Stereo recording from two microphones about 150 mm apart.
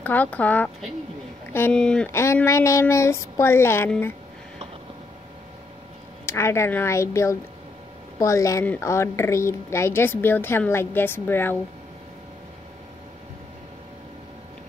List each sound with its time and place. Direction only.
0.0 s a woman's voice: 10° left (ahead or behind)
2.0 s a woman's voice: 15° left (ahead or behind)
6.2 s a woman's voice: 20° left (ahead or behind)